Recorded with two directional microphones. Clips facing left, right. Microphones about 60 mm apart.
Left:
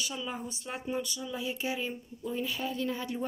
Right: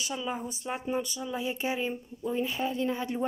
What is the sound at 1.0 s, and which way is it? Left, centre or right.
Speech, right.